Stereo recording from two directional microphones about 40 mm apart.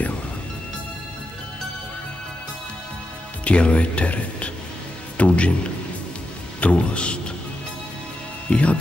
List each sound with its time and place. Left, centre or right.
3.4 s a man's voice: left
6.6 s speech: left
8.5 s speech: left